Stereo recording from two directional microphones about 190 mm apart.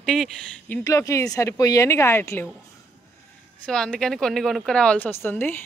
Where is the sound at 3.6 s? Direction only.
5° left (ahead or behind).